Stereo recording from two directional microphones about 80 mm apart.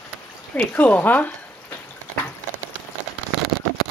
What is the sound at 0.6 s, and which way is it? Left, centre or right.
Speech, centre.